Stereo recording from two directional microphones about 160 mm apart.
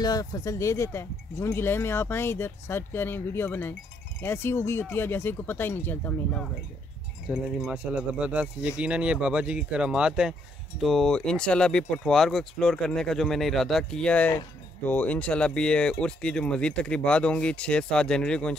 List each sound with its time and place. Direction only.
0.0 s speech: 25° left (ahead or behind)
7.2 s speech: 5° right (ahead or behind)